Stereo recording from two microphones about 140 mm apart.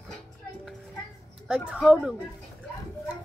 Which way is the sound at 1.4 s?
5° right (ahead or behind).